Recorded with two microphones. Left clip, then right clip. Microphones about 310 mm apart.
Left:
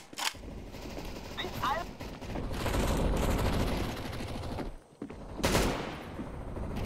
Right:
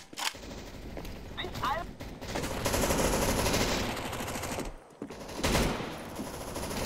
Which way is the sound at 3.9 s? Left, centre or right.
Right.